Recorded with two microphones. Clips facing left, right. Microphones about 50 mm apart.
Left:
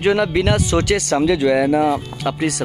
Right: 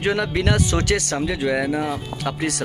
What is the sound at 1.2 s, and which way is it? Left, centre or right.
Speech, left.